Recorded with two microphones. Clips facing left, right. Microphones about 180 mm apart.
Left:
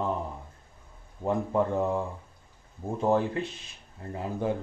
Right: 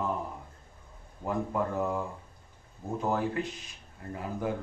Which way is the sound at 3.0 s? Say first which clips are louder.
Left 4 dB; 25° left (ahead or behind).